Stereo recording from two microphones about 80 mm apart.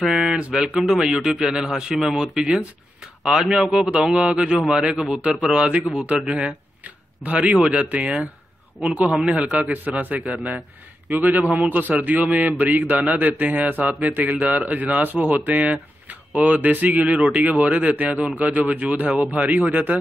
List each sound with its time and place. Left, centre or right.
0.1 s a man's voice: centre